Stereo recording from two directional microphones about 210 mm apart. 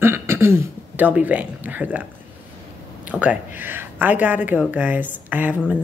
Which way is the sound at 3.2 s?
10° right (ahead or behind).